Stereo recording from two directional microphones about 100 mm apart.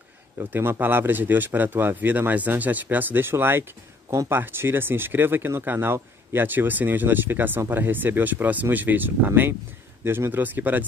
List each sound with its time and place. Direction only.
0.4 s speech: 25° right (ahead or behind)